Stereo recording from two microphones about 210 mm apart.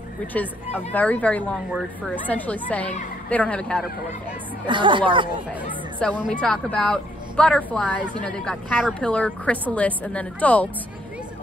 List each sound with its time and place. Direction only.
0.3 s a woman's voice: 5° left (ahead or behind)
4.6 s speech: 20° right (ahead or behind)
6.0 s a woman's voice: 5° left (ahead or behind)